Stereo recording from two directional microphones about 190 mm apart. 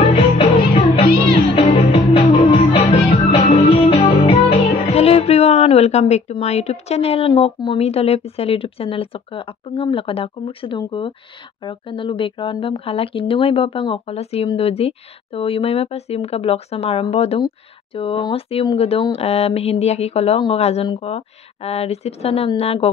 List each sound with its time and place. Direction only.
1.5 s music: 30° left (ahead or behind)
11.6 s speech: 25° left (ahead or behind)